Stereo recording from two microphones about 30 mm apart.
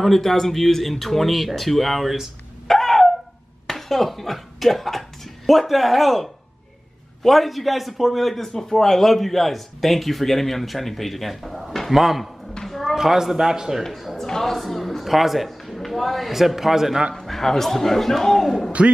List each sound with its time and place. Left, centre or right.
0.0 s a man's voice: centre
2.7 s a sound: centre
3.6 s a man's voice: centre
8.4 s a man's voice: centre
12.6 s a sound: centre
12.9 s a man's voice: centre
14.1 s a sound: centre
15.0 s a man's voice: centre
16.3 s a man's voice: centre
17.1 s a man's voice: centre
18.8 s a man's voice: right